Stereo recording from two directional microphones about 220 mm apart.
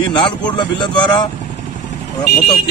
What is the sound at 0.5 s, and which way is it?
Speech, 20° left (ahead or behind).